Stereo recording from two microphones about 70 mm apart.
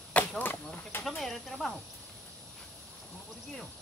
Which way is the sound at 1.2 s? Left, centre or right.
Centre.